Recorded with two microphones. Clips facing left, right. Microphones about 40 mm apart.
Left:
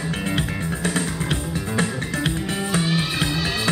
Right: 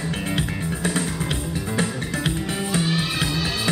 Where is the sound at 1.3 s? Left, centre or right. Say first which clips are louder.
Left 1 dB; centre.